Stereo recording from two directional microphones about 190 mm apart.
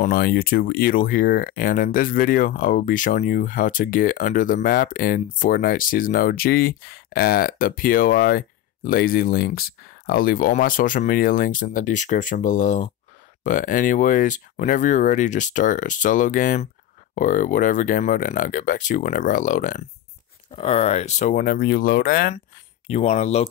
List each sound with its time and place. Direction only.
0.0 s speech: 50° left (ahead or behind)
22.8 s speech: 35° left (ahead or behind)